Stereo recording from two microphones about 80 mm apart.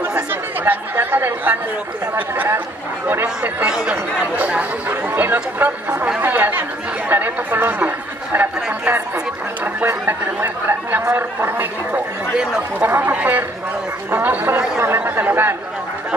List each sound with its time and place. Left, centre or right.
0.3 s speech: right
3.6 s speech: centre
9.8 s speech: right